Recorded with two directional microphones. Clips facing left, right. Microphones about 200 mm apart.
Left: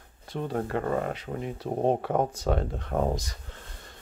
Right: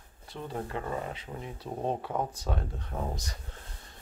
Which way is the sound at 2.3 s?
85° left.